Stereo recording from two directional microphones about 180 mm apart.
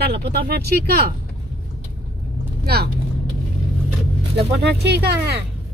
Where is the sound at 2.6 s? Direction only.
60° right (ahead or behind).